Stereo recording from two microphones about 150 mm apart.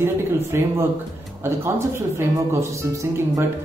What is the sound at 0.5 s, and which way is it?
Speech, 15° right (ahead or behind).